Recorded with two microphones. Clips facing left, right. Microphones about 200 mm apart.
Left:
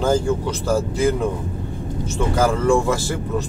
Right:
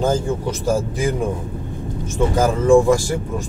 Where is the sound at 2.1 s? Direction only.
15° right (ahead or behind).